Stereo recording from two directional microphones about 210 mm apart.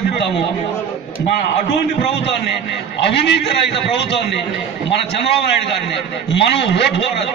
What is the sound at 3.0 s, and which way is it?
A man's voice, 55° left (ahead or behind).